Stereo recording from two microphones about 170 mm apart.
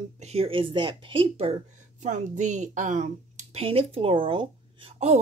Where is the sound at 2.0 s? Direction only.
45° right (ahead or behind).